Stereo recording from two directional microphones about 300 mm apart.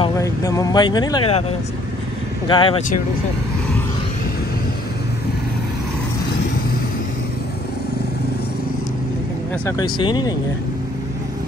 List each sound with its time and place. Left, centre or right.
0.0 s speech: centre
2.4 s speech: centre
9.7 s speech: centre